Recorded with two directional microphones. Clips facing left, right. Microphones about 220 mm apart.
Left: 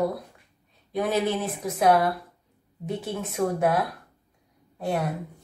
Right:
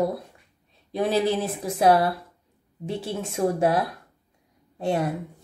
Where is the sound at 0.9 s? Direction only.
30° right (ahead or behind).